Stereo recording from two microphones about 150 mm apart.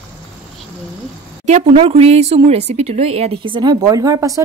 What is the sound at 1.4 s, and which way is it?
Speech, 45° right (ahead or behind).